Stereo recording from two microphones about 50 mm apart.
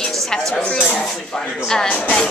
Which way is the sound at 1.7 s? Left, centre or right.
Centre.